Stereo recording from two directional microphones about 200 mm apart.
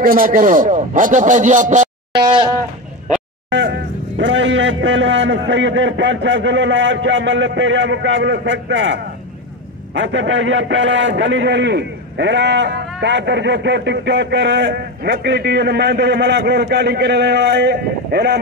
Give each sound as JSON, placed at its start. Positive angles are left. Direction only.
{"t": 0.0, "sound": "a man's voice", "side_deg": -45}
{"t": 2.2, "sound": "goat", "side_deg": -25}
{"t": 3.4, "sound": "a man's voice", "side_deg": -65}